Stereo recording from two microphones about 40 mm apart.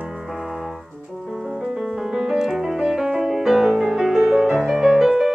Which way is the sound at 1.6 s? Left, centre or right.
Centre.